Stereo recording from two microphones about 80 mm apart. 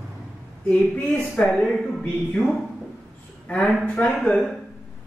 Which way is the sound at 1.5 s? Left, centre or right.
Centre.